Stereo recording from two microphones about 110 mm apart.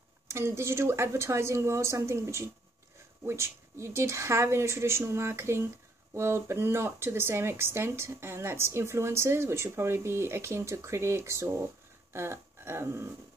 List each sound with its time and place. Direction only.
0.3 s speech: 25° right (ahead or behind)
12.1 s dog: 25° right (ahead or behind)